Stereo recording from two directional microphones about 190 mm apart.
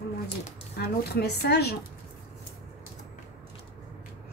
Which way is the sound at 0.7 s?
60° left (ahead or behind).